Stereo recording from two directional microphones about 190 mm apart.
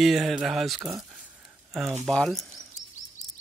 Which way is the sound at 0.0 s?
Centre (ahead or behind).